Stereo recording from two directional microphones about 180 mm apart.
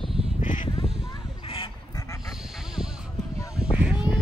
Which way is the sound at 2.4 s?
Centre (ahead or behind).